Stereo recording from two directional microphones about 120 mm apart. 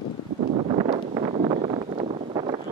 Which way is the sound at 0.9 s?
45° right (ahead or behind).